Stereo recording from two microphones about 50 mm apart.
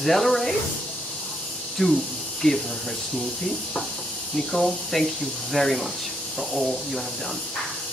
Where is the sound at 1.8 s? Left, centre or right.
Centre.